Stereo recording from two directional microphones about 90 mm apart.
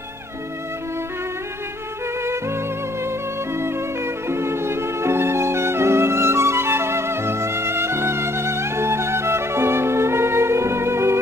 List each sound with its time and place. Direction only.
3.5 s music: 30° right (ahead or behind)